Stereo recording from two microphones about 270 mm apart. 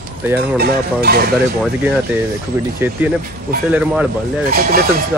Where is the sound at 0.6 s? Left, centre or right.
Right.